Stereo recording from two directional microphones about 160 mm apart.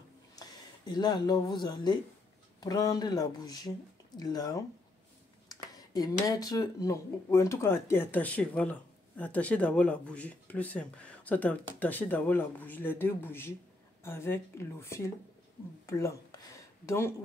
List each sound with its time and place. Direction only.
0.4 s speech: 25° left (ahead or behind)